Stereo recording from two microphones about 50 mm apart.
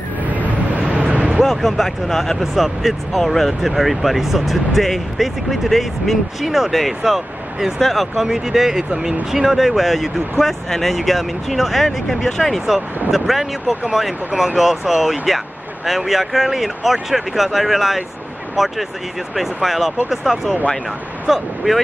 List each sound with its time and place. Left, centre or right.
0.9 s vehicle: right
1.4 s speech: centre